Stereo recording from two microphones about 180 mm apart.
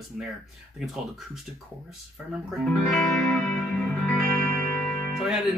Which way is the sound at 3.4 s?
5° left (ahead or behind).